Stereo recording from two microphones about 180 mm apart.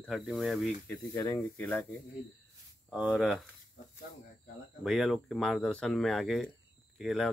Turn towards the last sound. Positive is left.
turn(degrees=0)  # may be behind; listen again after turning